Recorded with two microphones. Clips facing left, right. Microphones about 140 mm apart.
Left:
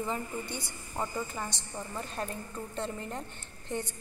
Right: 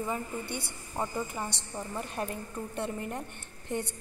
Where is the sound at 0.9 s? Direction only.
10° right (ahead or behind).